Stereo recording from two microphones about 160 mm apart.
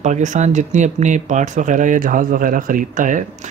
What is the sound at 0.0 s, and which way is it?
Speech, 50° right (ahead or behind).